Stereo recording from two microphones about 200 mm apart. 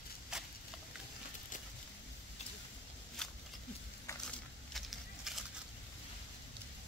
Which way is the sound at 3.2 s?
Centre (ahead or behind).